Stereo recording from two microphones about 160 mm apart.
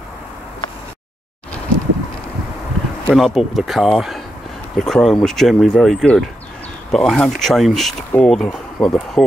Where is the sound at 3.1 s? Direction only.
Centre (ahead or behind).